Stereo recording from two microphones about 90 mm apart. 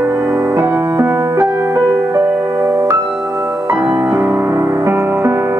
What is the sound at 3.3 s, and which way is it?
Music, 25° right (ahead or behind).